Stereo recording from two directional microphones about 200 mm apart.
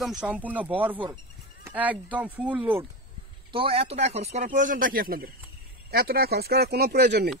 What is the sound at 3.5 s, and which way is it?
Speech, 25° right (ahead or behind).